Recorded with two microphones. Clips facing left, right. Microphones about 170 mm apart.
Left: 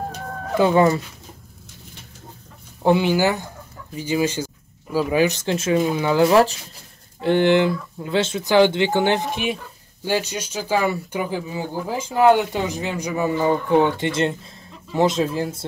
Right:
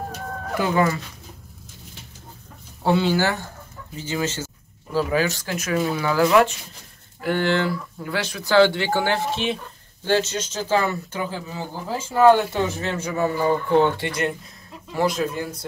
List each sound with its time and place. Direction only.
0.6 s speech: 20° left (ahead or behind)
2.8 s speech: 15° left (ahead or behind)